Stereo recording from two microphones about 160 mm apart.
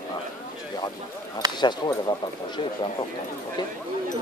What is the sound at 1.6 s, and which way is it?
Speech, 25° left (ahead or behind).